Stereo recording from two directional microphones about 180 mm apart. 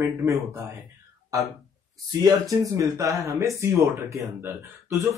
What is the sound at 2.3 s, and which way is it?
Speech, 20° right (ahead or behind).